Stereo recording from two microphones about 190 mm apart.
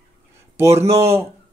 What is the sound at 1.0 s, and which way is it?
Speech, 15° right (ahead or behind).